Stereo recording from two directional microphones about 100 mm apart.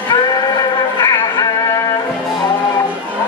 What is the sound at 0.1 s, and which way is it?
Music, 40° left (ahead or behind).